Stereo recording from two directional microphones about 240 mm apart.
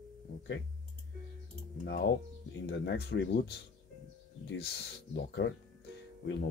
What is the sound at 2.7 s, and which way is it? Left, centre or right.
Speech, left.